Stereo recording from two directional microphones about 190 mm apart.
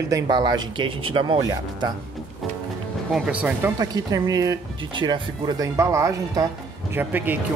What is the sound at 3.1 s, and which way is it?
Speech, 5° right (ahead or behind).